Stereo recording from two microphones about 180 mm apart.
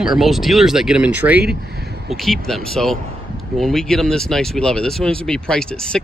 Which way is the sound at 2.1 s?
Centre (ahead or behind).